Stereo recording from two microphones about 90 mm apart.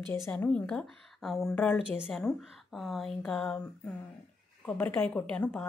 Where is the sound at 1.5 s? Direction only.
15° left (ahead or behind).